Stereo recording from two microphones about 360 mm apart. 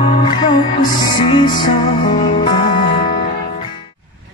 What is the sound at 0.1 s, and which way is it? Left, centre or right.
Music, centre.